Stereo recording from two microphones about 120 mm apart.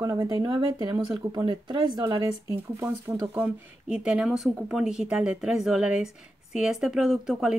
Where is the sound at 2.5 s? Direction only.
25° right (ahead or behind).